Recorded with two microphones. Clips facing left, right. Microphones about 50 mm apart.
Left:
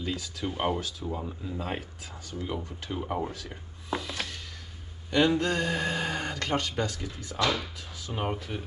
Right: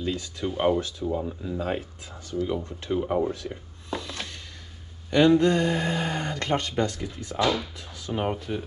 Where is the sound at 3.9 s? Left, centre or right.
Centre.